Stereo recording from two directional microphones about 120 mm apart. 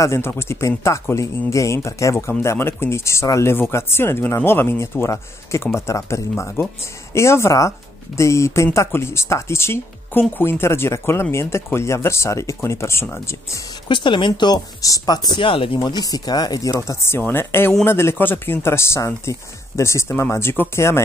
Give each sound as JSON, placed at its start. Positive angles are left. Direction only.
{"t": 0.0, "sound": "speech", "side_deg": 20}
{"t": 13.8, "sound": "speech", "side_deg": 40}
{"t": 15.8, "sound": "speech", "side_deg": 35}